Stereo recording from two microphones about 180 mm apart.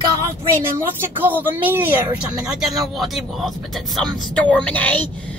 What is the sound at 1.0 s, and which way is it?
Speech, 10° right (ahead or behind).